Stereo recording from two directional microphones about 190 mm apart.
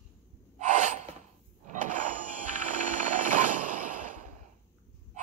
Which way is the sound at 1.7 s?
40° right (ahead or behind).